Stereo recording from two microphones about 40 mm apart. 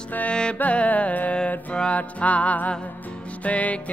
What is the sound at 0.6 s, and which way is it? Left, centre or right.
Music, left.